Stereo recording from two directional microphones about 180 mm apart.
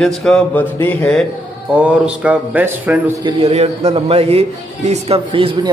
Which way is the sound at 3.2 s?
35° right (ahead or behind).